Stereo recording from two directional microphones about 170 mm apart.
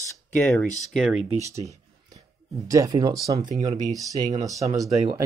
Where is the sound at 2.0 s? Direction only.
20° right (ahead or behind).